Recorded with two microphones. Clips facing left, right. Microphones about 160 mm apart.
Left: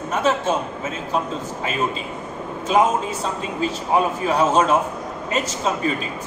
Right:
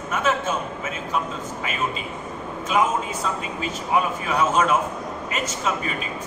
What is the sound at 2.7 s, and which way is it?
A man's voice, 30° left (ahead or behind).